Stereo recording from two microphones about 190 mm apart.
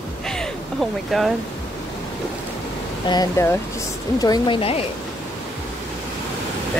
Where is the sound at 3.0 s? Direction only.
20° left (ahead or behind).